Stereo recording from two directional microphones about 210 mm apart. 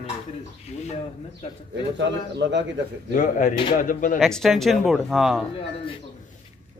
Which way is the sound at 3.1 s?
35° left (ahead or behind).